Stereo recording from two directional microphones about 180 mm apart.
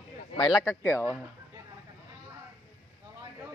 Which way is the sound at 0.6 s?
15° left (ahead or behind).